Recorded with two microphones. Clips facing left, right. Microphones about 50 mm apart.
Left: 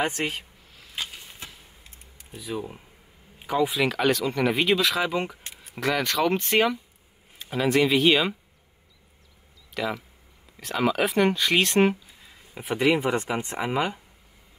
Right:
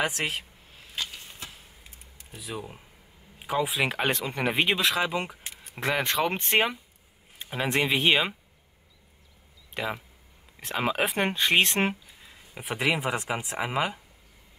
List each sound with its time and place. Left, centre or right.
0.9 s a sound: centre
2.1 s speech: centre
3.3 s a sound: centre
3.8 s speech: right
5.0 s speech: centre
5.8 s speech: right
9.8 s speech: right
11.9 s a sound: centre
13.0 s speech: centre